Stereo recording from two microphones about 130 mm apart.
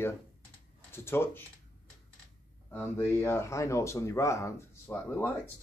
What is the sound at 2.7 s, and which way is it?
Speech, 20° left (ahead or behind).